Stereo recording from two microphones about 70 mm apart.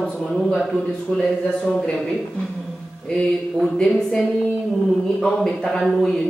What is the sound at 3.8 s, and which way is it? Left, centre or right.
Speech, centre.